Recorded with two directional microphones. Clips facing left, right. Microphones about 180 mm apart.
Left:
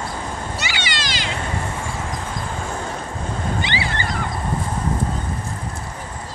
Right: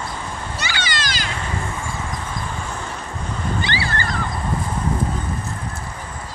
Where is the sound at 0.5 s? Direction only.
20° left (ahead or behind).